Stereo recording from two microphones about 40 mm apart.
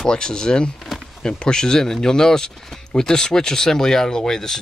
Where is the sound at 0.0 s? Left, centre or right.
Centre.